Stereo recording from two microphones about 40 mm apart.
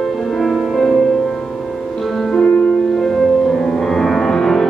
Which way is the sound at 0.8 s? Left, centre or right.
Centre.